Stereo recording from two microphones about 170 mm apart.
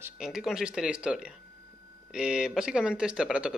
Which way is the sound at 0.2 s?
5° right (ahead or behind).